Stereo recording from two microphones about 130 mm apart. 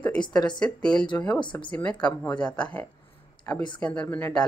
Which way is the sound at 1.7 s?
10° left (ahead or behind).